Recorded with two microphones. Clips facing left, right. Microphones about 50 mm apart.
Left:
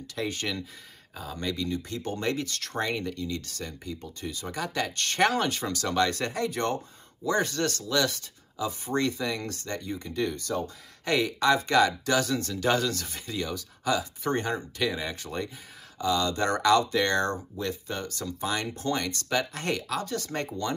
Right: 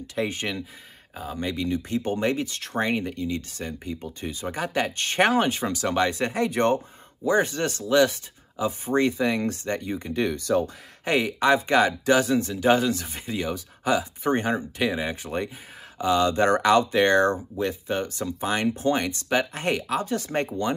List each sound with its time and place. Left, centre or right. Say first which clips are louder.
0.1 s speech: right 4 dB; right
11.1 s speech: right 3 dB; right